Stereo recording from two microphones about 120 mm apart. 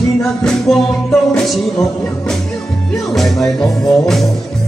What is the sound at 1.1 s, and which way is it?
Music, 10° left (ahead or behind).